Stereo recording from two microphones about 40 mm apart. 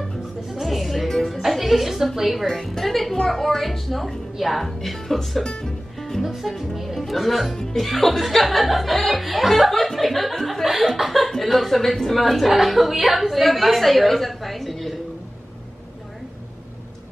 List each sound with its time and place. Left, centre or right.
0.5 s music: centre
2.1 s speech: centre
2.4 s a woman's voice: centre
5.4 s speech: left
5.9 s music: centre
6.2 s speech: centre